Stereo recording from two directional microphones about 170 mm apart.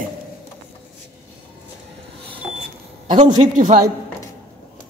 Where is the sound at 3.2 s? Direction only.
45° right (ahead or behind).